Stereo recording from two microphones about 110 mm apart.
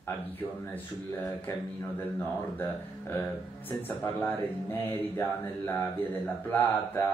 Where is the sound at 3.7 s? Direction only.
15° left (ahead or behind).